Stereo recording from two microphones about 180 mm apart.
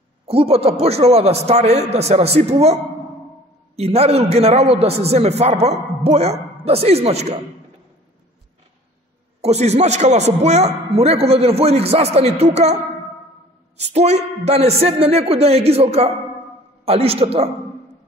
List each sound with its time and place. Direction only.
0.3 s a man's voice: 35° right (ahead or behind)
9.4 s a man's voice: 35° right (ahead or behind)
13.7 s a man's voice: 40° right (ahead or behind)